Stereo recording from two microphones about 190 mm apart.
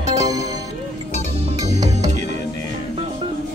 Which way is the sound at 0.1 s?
20° right (ahead or behind).